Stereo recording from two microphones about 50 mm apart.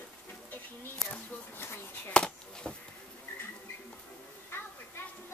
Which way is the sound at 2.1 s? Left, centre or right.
Centre.